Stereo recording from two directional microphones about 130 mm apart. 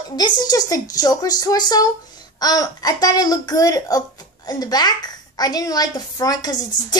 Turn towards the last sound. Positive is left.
turn(degrees=30)  # may be behind; listen again after turning